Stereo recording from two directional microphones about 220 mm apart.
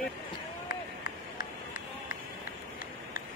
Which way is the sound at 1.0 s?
35° left (ahead or behind).